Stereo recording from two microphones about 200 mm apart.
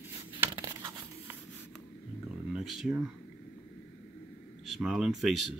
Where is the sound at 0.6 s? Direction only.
20° right (ahead or behind).